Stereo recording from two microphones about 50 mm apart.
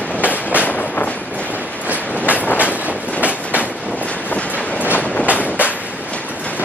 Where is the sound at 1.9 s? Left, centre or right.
Right.